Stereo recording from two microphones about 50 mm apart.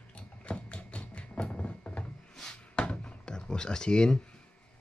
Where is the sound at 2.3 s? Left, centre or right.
Centre.